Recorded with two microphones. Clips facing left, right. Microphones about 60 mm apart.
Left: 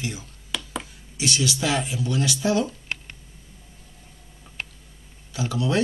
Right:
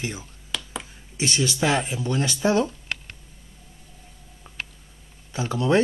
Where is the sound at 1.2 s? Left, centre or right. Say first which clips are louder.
Right 1 dB; right.